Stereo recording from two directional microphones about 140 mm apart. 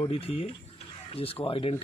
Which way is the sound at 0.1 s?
45° left (ahead or behind).